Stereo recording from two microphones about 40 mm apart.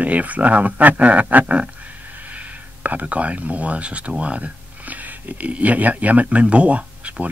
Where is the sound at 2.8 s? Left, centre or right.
Right.